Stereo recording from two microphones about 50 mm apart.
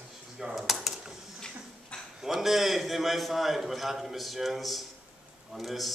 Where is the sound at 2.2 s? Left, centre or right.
Centre.